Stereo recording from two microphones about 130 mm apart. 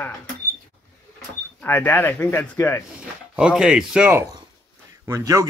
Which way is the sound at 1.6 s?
15° left (ahead or behind).